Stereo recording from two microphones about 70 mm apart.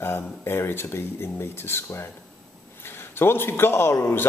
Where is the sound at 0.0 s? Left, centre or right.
Left.